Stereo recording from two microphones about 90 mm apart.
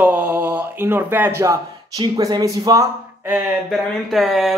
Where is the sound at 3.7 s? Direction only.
Centre (ahead or behind).